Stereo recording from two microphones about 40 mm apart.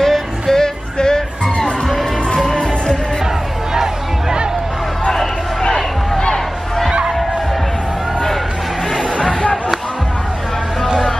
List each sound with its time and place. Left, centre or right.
0.0 s music: centre
3.7 s music: centre
6.1 s a sound: centre